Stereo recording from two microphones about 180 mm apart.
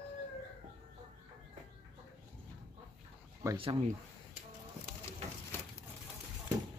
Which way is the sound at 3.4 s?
15° right (ahead or behind).